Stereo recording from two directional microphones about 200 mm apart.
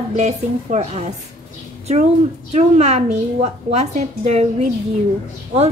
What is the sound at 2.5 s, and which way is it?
A woman's voice, 30° right (ahead or behind).